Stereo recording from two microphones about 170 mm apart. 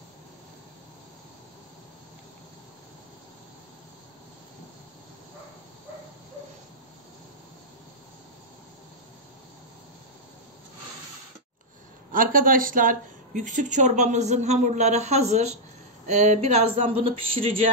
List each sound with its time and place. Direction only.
12.1 s a woman's voice: 55° right (ahead or behind); by 17.6 s 35° right (ahead or behind)